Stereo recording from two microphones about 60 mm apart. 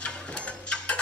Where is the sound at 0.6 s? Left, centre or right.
Centre.